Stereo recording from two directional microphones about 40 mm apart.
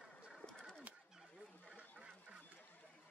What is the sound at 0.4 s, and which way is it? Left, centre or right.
Bird, centre.